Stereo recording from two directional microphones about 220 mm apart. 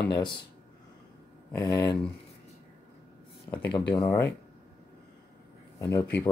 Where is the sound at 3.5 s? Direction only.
15° left (ahead or behind).